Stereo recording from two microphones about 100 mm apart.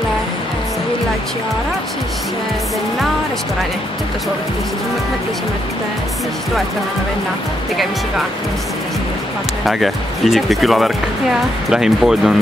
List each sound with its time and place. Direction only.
9.7 s speech: centre (ahead or behind)